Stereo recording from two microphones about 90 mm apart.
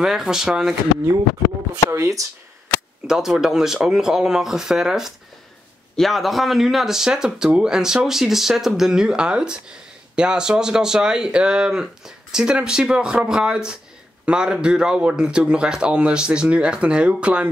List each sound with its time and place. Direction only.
0.0 s speech: 5° right (ahead or behind)
1.9 s speech: 35° right (ahead or behind)
3.1 s speech: 5° right (ahead or behind)